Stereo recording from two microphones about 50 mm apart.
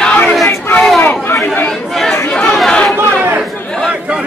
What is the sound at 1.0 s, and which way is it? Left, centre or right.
Chatter, left.